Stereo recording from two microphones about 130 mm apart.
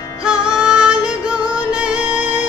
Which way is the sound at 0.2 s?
5° right (ahead or behind).